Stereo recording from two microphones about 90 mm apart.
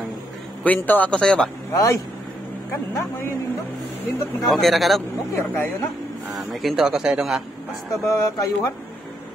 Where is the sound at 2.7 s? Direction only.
25° left (ahead or behind).